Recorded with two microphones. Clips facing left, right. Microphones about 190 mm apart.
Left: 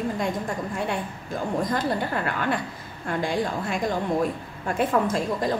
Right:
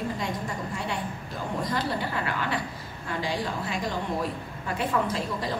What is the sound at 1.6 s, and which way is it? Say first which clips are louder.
A woman's voice: left 4 dB; 50° left (ahead or behind).